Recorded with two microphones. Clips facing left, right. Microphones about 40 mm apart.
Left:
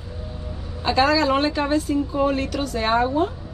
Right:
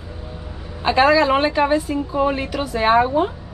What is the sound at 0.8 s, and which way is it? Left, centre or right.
A woman's voice, right.